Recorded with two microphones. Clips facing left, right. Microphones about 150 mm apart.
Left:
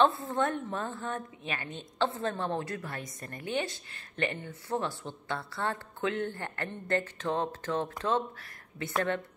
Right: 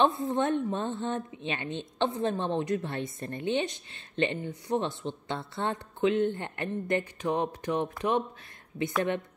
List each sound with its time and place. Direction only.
0.0 s a woman's voice: 20° right (ahead or behind)